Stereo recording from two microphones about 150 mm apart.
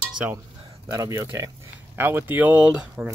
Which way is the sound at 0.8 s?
20° right (ahead or behind).